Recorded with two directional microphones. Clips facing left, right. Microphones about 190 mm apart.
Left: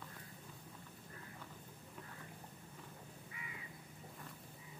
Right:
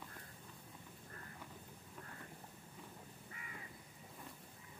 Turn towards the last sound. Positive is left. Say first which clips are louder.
# left 1 dB
turn(degrees=-45)  # may be behind; listen again after turning